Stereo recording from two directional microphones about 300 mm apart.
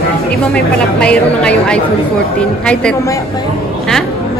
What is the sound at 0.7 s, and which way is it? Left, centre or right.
A woman's voice, centre.